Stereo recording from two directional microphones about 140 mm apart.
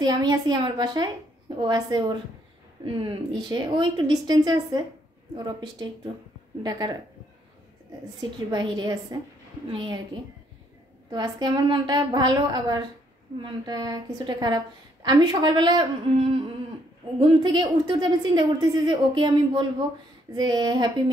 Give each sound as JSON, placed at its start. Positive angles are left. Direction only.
{"t": 0.0, "sound": "a woman's voice", "side_deg": -30}
{"t": 8.2, "sound": "a woman's voice", "side_deg": -30}
{"t": 11.1, "sound": "a woman's voice", "side_deg": -30}
{"t": 17.2, "sound": "a woman's voice", "side_deg": -35}